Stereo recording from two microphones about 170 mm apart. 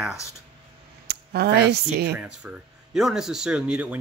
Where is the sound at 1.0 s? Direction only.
70° right (ahead or behind).